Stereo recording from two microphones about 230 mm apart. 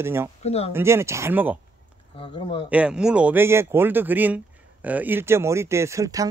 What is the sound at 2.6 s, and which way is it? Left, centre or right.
A man's voice, centre.